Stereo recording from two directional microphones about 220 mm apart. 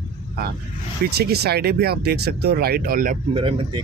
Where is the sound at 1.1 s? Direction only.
45° right (ahead or behind).